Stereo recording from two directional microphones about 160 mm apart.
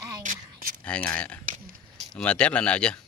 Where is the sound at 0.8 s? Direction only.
10° left (ahead or behind).